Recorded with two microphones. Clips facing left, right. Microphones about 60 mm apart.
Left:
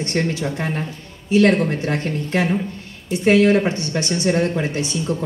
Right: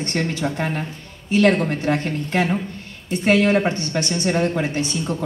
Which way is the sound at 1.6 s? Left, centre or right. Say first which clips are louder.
Even; right.